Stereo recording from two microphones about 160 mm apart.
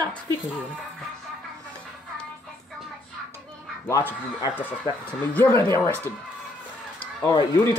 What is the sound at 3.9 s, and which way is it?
Speech, 10° left (ahead or behind).